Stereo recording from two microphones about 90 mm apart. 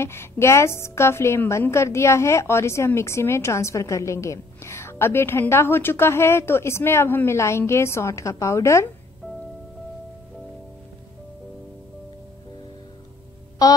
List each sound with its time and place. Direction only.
0.0 s a woman's voice: 30° left (ahead or behind)
13.6 s music: 40° left (ahead or behind)